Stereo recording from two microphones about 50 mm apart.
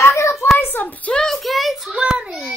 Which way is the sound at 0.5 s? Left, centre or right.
Left.